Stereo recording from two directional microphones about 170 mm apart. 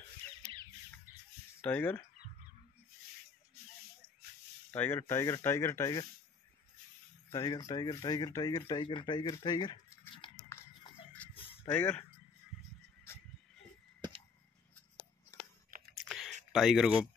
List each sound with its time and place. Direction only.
1.1 s a sound: 15° right (ahead or behind)
1.6 s speech: 10° left (ahead or behind)
4.6 s speech: 10° left (ahead or behind)
7.2 s speech: 20° left (ahead or behind)
10.2 s a sound: 30° left (ahead or behind)
11.2 s a sound: 10° left (ahead or behind)
11.6 s speech: 15° left (ahead or behind)
12.5 s music: centre (ahead or behind)
16.0 s computer keyboard: centre (ahead or behind)
16.5 s speech: centre (ahead or behind)